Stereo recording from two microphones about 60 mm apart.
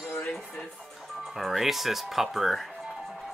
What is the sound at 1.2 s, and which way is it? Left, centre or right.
Speech, centre.